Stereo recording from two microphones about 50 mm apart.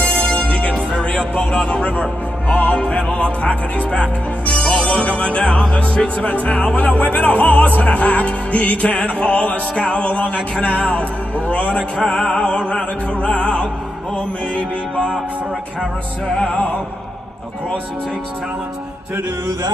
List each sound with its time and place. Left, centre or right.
0.0 s music: left